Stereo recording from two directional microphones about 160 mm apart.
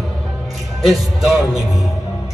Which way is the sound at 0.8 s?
Centre (ahead or behind).